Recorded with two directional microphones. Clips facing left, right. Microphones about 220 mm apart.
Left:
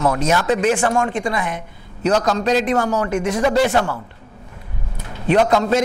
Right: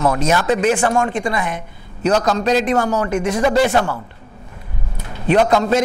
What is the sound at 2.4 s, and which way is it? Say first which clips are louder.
Speech: right 1 dB; 15° right (ahead or behind).